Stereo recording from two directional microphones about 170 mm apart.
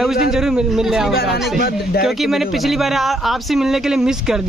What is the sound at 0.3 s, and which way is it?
Speech, 5° right (ahead or behind).